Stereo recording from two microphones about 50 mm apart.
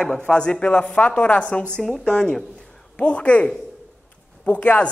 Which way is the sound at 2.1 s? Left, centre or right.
Centre.